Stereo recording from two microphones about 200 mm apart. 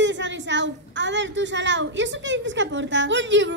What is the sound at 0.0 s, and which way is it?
A woman's voice, 65° right (ahead or behind).